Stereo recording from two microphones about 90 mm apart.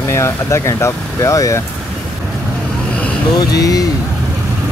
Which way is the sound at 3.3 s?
45° left (ahead or behind).